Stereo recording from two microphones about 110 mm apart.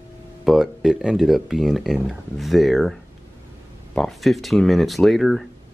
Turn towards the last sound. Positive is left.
turn(degrees=0)  # may be behind; listen again after turning